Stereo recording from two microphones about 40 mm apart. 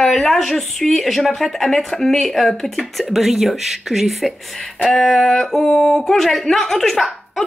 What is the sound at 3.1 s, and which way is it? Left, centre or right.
Speech, centre.